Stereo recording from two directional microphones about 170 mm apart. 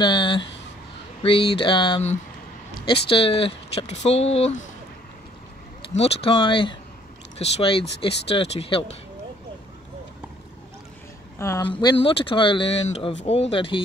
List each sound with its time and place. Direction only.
0.0 s speech: 25° left (ahead or behind)
5.9 s speech: 35° left (ahead or behind)
11.3 s speech: 15° left (ahead or behind)
11.6 s speech: 30° left (ahead or behind)